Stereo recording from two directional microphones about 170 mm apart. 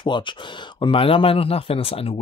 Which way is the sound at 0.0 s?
30° left (ahead or behind).